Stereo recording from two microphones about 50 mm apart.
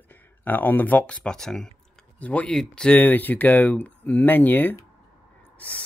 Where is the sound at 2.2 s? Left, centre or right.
Left.